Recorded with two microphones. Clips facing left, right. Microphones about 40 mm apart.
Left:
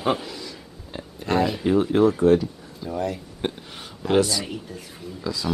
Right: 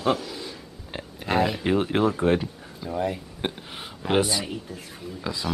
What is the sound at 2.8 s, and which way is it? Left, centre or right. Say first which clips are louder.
Speech: even; centre.